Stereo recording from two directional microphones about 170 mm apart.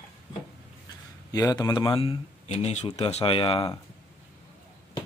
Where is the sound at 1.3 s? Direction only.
20° left (ahead or behind).